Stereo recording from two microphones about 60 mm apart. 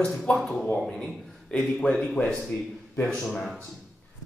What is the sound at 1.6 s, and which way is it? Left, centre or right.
Speech, centre.